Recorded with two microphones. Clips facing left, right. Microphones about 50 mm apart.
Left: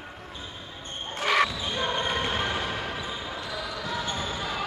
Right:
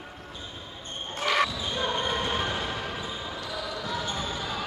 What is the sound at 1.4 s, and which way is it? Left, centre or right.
Basketball bounce, centre.